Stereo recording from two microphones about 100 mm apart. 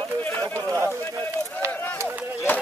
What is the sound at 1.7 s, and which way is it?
Run, 20° left (ahead or behind).